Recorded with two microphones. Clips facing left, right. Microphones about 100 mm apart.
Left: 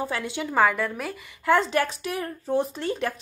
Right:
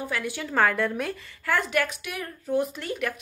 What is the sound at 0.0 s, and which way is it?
A woman's voice, 25° left (ahead or behind).